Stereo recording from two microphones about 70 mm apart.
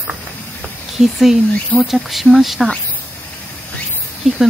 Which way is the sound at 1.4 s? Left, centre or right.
Left.